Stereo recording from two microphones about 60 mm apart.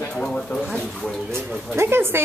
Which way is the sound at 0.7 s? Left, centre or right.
Centre.